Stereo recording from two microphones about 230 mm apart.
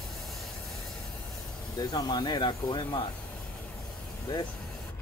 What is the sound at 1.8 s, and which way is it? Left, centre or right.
Speech, centre.